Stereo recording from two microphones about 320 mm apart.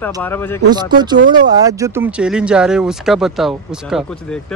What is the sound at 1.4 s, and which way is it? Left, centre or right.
Speech, centre.